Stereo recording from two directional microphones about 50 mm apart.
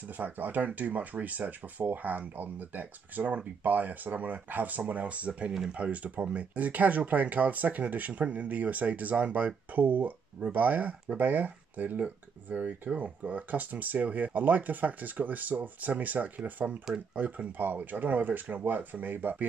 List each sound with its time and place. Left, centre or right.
0.2 s speech: right